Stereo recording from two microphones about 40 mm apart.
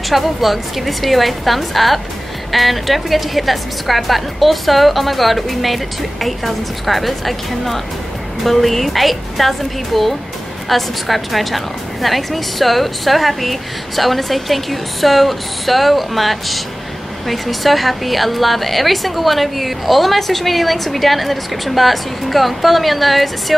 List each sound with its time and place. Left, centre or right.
0.1 s a woman's voice: centre